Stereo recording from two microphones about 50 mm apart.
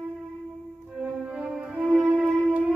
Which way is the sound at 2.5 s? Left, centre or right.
Right.